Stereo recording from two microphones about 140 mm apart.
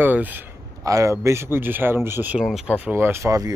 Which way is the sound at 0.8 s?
25° right (ahead or behind).